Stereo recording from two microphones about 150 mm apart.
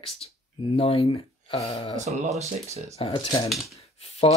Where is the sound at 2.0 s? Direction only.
50° right (ahead or behind).